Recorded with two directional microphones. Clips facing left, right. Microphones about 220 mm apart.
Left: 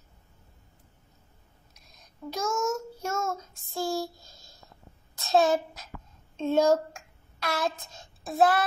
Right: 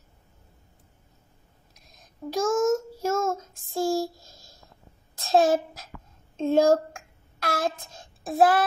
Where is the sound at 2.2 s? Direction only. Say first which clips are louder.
Right 4 dB; 35° right (ahead or behind).